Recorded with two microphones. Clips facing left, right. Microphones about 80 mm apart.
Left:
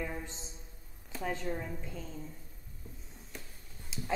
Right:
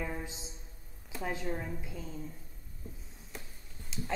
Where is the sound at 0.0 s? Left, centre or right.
Centre.